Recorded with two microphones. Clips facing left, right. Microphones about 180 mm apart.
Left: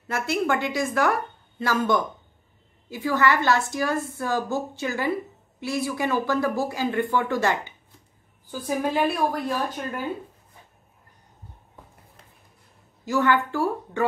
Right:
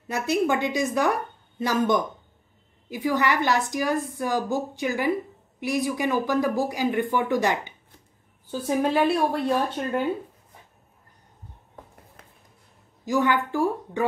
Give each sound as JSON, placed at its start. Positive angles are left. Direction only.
{"t": 0.1, "sound": "a woman's voice", "side_deg": -15}
{"t": 9.0, "sound": "speech", "side_deg": -25}
{"t": 13.0, "sound": "a woman's voice", "side_deg": -15}